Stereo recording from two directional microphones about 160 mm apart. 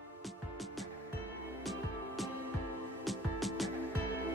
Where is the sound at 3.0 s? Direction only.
Centre (ahead or behind).